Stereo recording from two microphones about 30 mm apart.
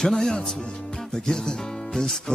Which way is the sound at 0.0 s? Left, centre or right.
Centre.